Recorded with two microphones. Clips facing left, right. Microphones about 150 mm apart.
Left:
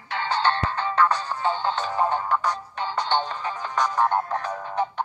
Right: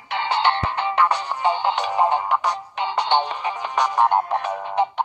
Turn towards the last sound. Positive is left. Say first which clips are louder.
# right 5 dB
turn(degrees=-20)  # may be behind; listen again after turning